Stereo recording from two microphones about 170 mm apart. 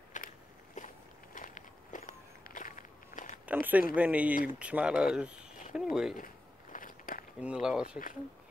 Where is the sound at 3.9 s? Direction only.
10° right (ahead or behind).